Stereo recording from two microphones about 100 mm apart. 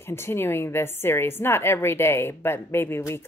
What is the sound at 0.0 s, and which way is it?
A woman's voice, 25° left (ahead or behind).